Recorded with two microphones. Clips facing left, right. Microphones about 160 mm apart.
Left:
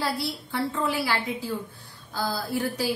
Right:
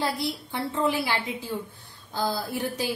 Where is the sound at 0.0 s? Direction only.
20° right (ahead or behind).